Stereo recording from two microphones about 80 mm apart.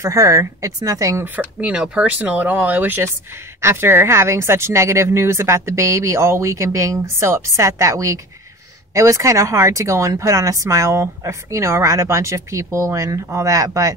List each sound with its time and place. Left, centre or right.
0.0 s speech: right
1.6 s speech: centre; by 13.9 s right